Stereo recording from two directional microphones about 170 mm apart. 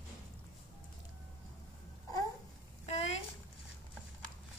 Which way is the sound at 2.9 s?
40° left (ahead or behind).